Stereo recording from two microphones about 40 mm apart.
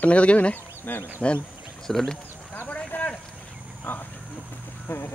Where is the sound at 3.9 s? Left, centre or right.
Left.